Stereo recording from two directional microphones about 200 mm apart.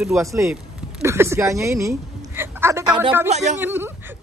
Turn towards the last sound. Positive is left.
turn(degrees=-10)  # may be behind; listen again after turning